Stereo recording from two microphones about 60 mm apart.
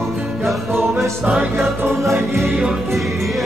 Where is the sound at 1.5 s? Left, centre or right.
Right.